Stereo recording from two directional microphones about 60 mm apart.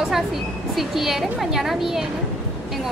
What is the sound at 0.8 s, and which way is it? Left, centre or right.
A woman's voice, centre.